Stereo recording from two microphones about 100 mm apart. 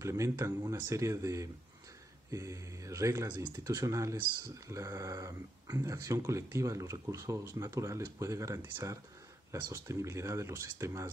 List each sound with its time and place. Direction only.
0.0 s speech: 30° right (ahead or behind)